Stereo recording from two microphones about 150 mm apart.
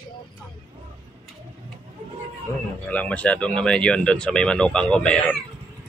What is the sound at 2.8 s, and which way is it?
Speech, 10° left (ahead or behind).